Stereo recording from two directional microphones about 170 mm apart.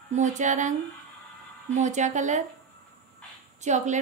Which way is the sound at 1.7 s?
45° right (ahead or behind).